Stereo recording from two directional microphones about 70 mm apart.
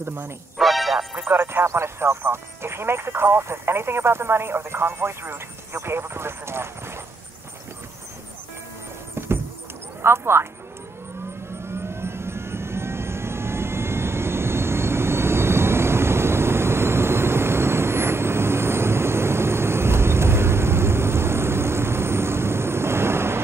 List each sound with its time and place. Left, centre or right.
0.0 s speech: right
0.6 s music: centre
1.3 s speech: right
10.0 s speech: right
11.7 s vehicle: right